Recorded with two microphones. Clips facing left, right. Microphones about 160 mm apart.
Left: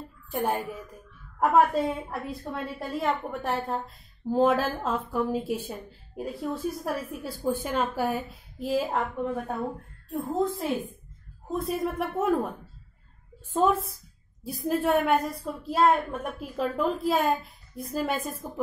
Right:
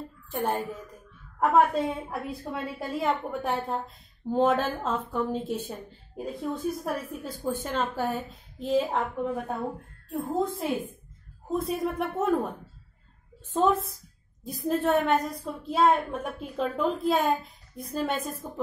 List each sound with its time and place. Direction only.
0.3 s a woman's voice: 10° left (ahead or behind)
13.5 s a woman's voice: 5° left (ahead or behind)